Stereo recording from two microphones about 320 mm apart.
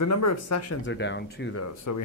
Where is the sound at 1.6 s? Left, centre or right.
Left.